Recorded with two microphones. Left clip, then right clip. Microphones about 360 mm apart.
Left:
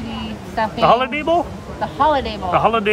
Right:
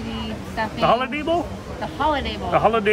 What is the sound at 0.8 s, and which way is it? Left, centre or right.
Speech, centre.